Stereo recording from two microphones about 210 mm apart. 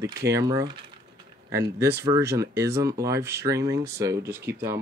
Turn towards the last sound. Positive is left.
turn(degrees=-10)  # may be behind; listen again after turning